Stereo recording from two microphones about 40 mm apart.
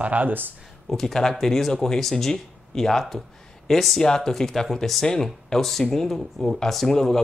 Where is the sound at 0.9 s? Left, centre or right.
Centre.